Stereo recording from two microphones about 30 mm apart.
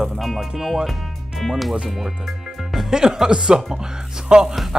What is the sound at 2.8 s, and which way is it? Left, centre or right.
Speech, centre.